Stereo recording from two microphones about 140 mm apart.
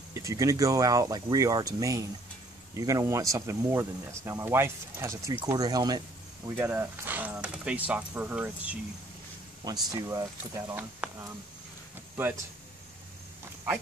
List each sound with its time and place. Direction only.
0.1 s speech: 25° right (ahead or behind)
6.5 s speech: 10° right (ahead or behind)
9.6 s speech: 30° right (ahead or behind)